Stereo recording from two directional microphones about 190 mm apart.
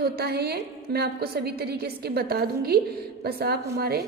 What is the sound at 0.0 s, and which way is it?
A woman's voice, 55° right (ahead or behind).